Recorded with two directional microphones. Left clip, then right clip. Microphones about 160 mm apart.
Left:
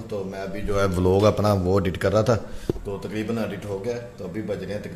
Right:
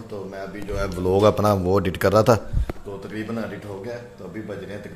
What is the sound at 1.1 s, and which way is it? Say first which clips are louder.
Speech: right 3 dB; 15° right (ahead or behind).